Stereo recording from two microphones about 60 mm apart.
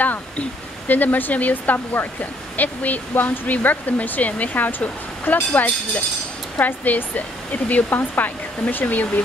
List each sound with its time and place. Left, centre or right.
0.0 s speech: left